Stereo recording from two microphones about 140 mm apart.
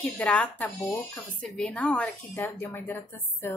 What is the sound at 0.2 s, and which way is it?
Speech, 10° left (ahead or behind).